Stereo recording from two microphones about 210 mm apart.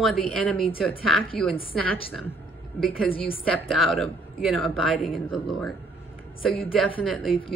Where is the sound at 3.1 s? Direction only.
25° left (ahead or behind).